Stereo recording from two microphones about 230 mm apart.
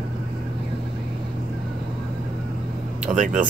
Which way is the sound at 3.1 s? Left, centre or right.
Right.